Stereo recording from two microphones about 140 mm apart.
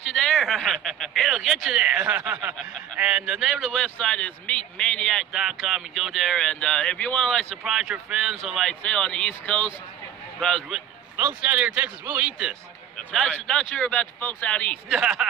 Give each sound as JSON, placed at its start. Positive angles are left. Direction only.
{"t": 0.0, "sound": "a man's voice", "side_deg": 5}
{"t": 2.5, "sound": "speech", "side_deg": 5}
{"t": 3.0, "sound": "a man's voice", "side_deg": -10}
{"t": 11.1, "sound": "a man's voice", "side_deg": -10}
{"t": 14.9, "sound": "a man's voice", "side_deg": -5}